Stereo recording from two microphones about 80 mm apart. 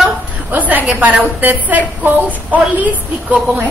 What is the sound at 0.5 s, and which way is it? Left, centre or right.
A woman's voice, right.